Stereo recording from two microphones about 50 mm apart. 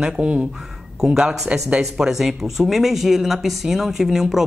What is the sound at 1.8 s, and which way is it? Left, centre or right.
A woman's voice, centre.